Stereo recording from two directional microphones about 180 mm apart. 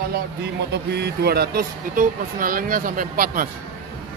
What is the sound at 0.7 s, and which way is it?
Speech, 65° right (ahead or behind).